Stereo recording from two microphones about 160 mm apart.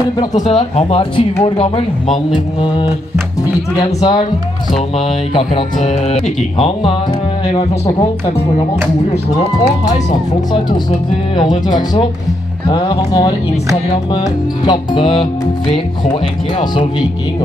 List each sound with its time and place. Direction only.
0.2 s music: 25° left (ahead or behind)
0.5 s speech: 35° left (ahead or behind)
2.3 s music: 30° left (ahead or behind)
4.7 s speech: 35° left (ahead or behind)
9.8 s music: 25° left (ahead or behind)
15.7 s speech: 30° left (ahead or behind)